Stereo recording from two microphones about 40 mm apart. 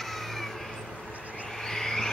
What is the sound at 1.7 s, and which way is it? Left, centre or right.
Vehicle, centre.